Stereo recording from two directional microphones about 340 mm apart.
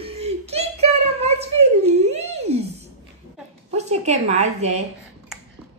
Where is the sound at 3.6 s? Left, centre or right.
Centre.